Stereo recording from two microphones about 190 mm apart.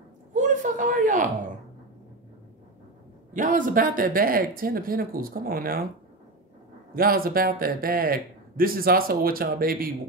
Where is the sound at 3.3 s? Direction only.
45° right (ahead or behind).